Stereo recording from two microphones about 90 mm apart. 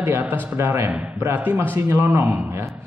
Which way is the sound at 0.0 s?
25° right (ahead or behind).